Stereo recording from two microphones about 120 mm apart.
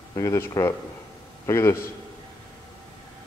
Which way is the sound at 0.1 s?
25° left (ahead or behind).